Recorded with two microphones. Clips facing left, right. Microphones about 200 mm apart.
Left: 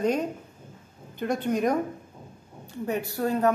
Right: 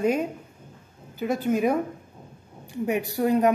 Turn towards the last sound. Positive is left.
turn(degrees=-15)  # may be behind; listen again after turning